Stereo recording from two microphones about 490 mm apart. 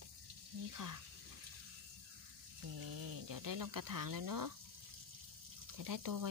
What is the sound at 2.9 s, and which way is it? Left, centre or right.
Speech, right.